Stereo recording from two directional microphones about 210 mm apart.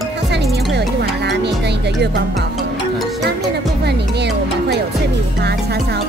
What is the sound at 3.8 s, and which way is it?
Music, 55° right (ahead or behind).